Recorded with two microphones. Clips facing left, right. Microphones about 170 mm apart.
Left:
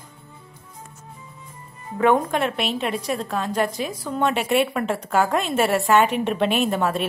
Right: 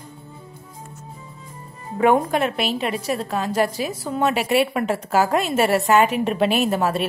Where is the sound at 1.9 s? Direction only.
10° right (ahead or behind).